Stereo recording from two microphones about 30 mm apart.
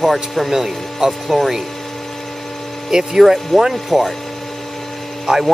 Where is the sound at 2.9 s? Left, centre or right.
Right.